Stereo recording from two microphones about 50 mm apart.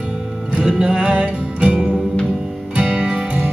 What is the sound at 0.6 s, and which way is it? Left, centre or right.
Music, centre.